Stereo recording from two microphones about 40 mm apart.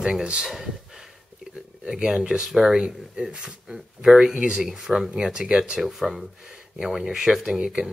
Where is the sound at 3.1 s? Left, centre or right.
Right.